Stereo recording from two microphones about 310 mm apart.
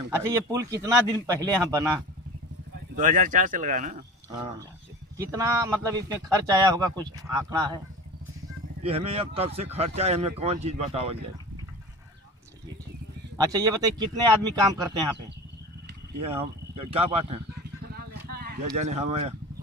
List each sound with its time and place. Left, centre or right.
0.2 s speech: centre
3.0 s speech: right
5.1 s speech: centre
8.8 s speech: centre
13.4 s speech: centre
16.2 s speech: centre
17.9 s vehicle: right
18.8 s speech: right